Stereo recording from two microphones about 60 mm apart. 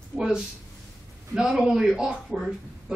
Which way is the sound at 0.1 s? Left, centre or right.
Centre.